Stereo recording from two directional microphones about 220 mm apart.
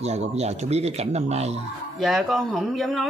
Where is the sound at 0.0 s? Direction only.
30° right (ahead or behind).